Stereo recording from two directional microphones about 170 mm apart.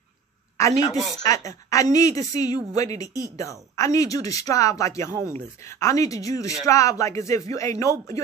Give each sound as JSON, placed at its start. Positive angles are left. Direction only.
{"t": 0.6, "sound": "a woman's voice", "side_deg": 20}